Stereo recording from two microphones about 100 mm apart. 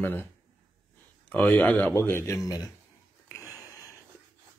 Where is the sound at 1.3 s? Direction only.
15° left (ahead or behind).